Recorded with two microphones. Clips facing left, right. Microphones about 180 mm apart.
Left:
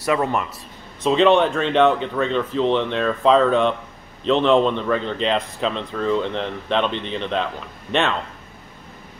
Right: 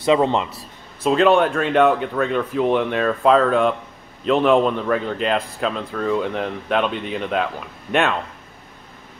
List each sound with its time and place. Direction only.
0.0 s speech: 20° right (ahead or behind)
1.0 s a man's voice: 5° right (ahead or behind)